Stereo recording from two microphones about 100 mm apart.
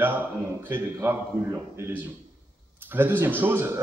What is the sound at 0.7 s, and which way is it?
A man's voice, 25° right (ahead or behind).